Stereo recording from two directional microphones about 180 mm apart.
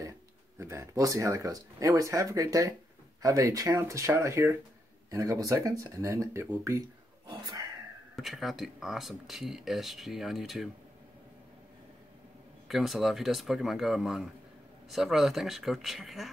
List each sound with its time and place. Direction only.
0.6 s speech: 15° right (ahead or behind)
7.2 s whispering: 20° right (ahead or behind)
8.2 s speech: centre (ahead or behind)
12.6 s speech: centre (ahead or behind)